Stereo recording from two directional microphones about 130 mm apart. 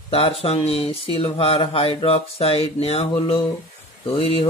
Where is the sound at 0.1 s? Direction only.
50° left (ahead or behind).